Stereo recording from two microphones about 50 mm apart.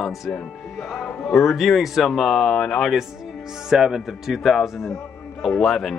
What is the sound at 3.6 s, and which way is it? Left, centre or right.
Speech, centre.